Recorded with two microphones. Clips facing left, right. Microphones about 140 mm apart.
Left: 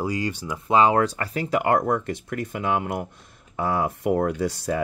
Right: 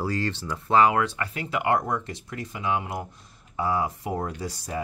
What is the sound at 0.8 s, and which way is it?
Speech, 35° left (ahead or behind).